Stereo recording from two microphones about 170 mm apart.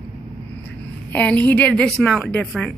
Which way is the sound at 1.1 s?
10° left (ahead or behind).